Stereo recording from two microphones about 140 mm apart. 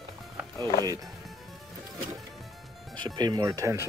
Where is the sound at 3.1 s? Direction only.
30° right (ahead or behind).